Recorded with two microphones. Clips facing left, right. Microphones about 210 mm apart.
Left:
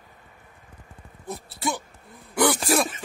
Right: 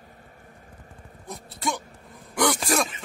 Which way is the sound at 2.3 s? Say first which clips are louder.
Left 2 dB; 5° left (ahead or behind).